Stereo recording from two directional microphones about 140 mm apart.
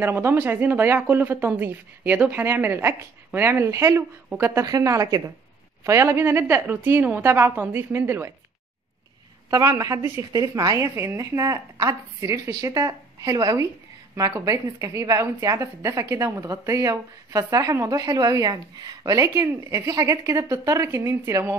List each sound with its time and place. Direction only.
0.0 s a woman's voice: 15° right (ahead or behind)
9.5 s a woman's voice: 20° right (ahead or behind)